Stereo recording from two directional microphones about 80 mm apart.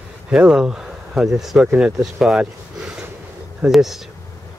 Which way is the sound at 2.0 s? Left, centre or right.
Centre.